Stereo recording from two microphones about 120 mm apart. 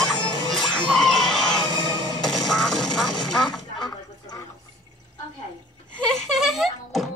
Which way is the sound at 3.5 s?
35° left (ahead or behind).